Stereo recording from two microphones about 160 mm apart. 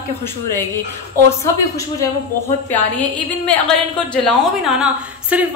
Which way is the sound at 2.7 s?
10° left (ahead or behind).